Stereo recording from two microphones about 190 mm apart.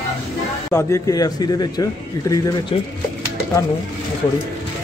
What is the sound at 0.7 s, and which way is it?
A man's voice, 15° left (ahead or behind).